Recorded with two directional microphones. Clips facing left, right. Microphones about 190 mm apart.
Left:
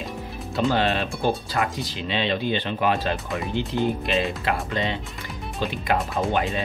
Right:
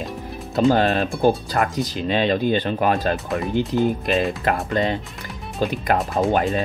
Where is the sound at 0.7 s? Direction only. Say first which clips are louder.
Right 5 dB; 45° right (ahead or behind).